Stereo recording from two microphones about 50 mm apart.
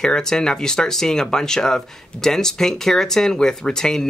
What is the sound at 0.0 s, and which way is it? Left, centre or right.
Speech, centre.